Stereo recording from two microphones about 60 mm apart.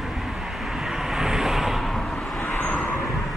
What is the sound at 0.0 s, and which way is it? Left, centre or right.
Vehicle, centre.